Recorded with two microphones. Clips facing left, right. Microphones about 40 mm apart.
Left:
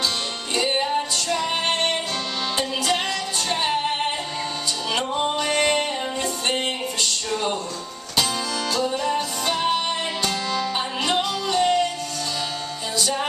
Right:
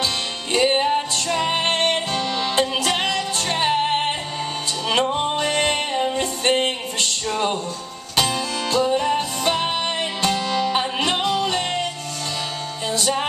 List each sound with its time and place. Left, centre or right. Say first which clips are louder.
0.6 s music: right 4 dB; right